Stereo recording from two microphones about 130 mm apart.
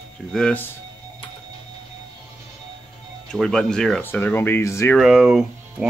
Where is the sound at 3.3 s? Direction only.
5° left (ahead or behind).